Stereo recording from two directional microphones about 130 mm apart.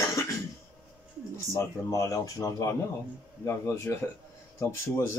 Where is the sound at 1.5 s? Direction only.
25° left (ahead or behind).